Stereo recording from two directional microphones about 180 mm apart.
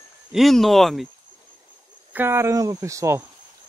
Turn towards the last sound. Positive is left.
turn(degrees=-15)  # may be behind; listen again after turning